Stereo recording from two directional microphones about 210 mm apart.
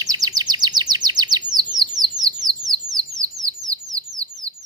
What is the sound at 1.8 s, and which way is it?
Bird, 20° right (ahead or behind).